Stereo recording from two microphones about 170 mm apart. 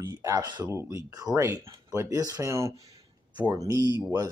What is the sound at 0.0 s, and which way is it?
Speech, 20° right (ahead or behind).